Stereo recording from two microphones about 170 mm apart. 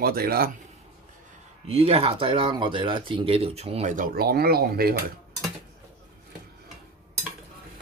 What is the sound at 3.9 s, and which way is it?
Speech, 60° right (ahead or behind).